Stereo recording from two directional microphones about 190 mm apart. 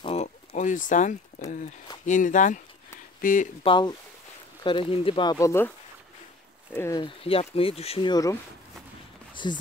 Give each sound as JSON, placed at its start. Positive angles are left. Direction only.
{"t": 0.0, "sound": "a sound", "side_deg": 30}
{"t": 0.6, "sound": "speech", "side_deg": 40}
{"t": 3.6, "sound": "speech", "side_deg": 25}
{"t": 6.7, "sound": "speech", "side_deg": 15}
{"t": 7.0, "sound": "speech", "side_deg": 30}